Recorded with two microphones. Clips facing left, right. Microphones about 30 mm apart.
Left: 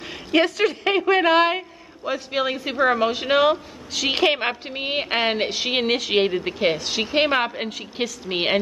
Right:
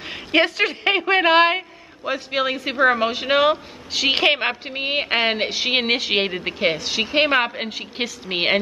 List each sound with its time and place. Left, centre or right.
0.0 s speech: right; by 5.8 s centre
5.8 s speech: right